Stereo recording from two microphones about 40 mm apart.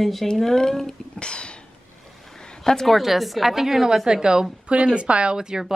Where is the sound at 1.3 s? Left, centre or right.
Left.